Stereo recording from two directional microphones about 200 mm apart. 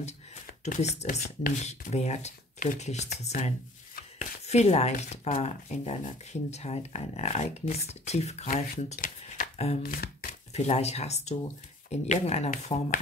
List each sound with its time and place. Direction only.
0.7 s speech: 40° left (ahead or behind)
8.9 s shuffling cards: 40° left (ahead or behind)
9.8 s speech: 45° left (ahead or behind)
10.5 s speech: 35° left (ahead or behind)